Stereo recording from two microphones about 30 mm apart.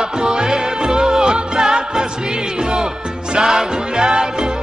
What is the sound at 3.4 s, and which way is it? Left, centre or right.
Music, centre.